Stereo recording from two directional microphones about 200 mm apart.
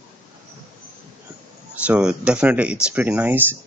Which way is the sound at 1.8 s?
5° right (ahead or behind).